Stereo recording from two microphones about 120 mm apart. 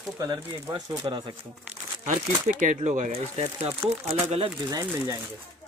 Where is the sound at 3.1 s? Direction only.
60° right (ahead or behind).